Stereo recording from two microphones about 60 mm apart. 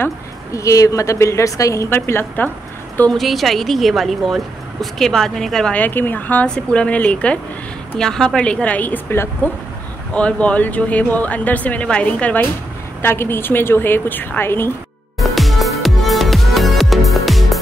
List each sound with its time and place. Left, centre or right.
0.5 s a woman's voice: left
1.9 s a woman's voice: left
3.1 s a woman's voice: centre
5.7 s speech: left
6.4 s speech: centre
8.0 s a woman's voice: centre
8.5 s a woman's voice: left
10.1 s speech: left
13.0 s a woman's voice: left
15.1 s music: centre